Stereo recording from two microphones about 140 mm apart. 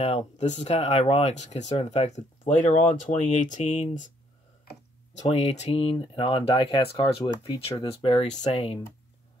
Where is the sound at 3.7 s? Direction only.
45° left (ahead or behind).